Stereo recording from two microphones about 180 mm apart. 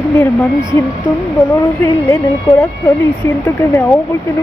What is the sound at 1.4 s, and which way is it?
A woman's voice, 15° left (ahead or behind).